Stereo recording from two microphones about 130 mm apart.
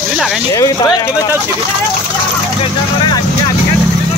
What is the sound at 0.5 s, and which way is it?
Speech, 30° left (ahead or behind).